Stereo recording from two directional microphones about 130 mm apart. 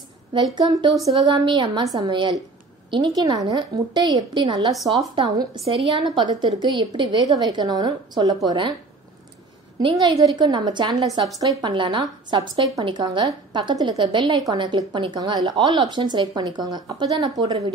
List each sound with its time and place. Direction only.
0.6 s a woman's voice: 35° right (ahead or behind)
9.8 s a woman's voice: 35° right (ahead or behind)